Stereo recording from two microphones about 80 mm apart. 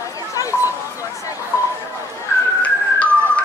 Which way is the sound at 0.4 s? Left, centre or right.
Left.